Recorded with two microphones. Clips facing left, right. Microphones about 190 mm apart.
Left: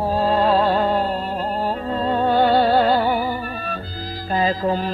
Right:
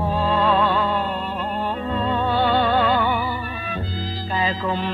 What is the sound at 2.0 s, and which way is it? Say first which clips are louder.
Music: left 4 dB; 40° left (ahead or behind).